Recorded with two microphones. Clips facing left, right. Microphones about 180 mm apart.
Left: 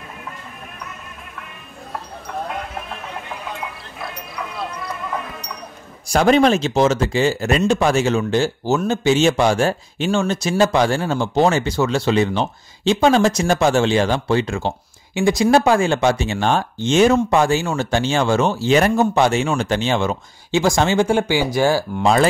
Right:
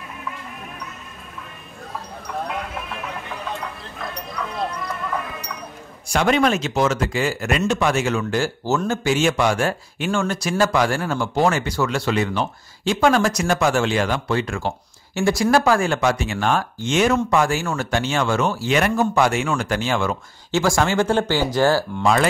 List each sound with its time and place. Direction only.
6.0 s speech: 35° left (ahead or behind); by 21.8 s 15° left (ahead or behind)
22.0 s speech: 25° left (ahead or behind)